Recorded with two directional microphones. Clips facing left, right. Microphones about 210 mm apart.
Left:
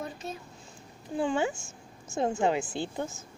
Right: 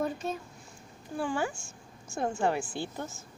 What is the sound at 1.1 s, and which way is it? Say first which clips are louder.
A woman's voice: left 3 dB; 20° left (ahead or behind).